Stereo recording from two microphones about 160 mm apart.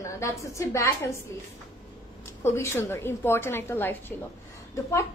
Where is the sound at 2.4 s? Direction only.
15° left (ahead or behind).